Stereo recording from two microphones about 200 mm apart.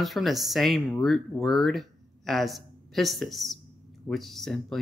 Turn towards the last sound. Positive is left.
turn(degrees=0)  # may be behind; listen again after turning